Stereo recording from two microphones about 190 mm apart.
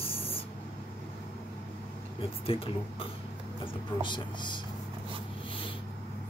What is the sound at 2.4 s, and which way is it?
Speech, 30° left (ahead or behind).